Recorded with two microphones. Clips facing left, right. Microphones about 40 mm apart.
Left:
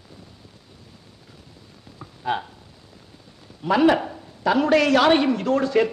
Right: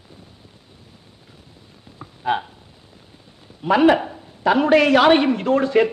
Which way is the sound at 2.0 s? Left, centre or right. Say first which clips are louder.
Right 4 dB; centre.